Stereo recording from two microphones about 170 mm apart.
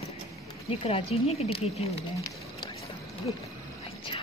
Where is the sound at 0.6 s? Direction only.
35° left (ahead or behind).